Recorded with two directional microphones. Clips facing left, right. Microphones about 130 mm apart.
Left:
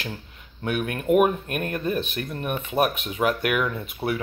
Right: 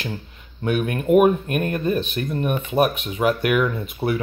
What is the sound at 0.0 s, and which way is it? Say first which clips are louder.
Speech: right 4 dB; centre (ahead or behind).